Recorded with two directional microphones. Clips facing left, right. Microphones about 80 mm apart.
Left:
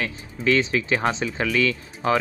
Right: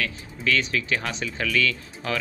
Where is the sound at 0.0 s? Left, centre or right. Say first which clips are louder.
Left 3 dB; left.